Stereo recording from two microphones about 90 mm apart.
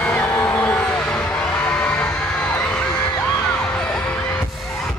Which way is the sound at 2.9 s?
25° left (ahead or behind).